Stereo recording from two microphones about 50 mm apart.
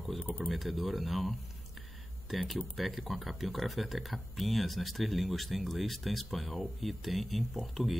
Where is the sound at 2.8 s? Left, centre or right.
Centre.